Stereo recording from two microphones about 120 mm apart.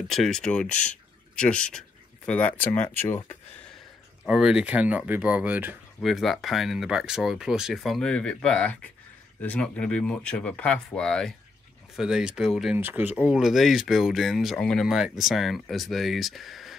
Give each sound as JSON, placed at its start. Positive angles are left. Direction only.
{"t": 0.1, "sound": "speech", "side_deg": 5}
{"t": 4.2, "sound": "speech", "side_deg": -5}
{"t": 6.0, "sound": "speech", "side_deg": 0}
{"t": 12.7, "sound": "speech", "side_deg": -15}